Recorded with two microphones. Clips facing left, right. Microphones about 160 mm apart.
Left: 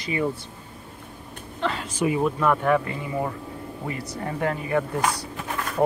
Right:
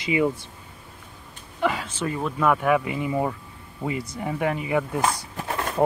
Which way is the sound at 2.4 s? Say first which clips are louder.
Right 4 dB; 5° right (ahead or behind).